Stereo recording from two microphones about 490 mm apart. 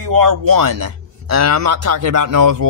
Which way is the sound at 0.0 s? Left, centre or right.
Right.